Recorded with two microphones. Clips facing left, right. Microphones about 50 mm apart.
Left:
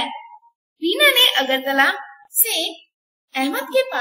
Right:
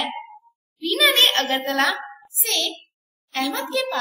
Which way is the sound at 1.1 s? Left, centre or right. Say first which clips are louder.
Left 2 dB; left.